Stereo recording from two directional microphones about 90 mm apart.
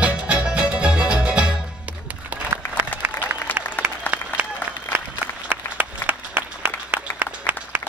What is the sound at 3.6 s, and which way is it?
Applause, 20° right (ahead or behind).